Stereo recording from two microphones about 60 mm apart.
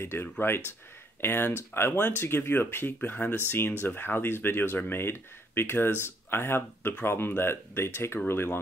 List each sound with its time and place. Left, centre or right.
0.0 s speech: left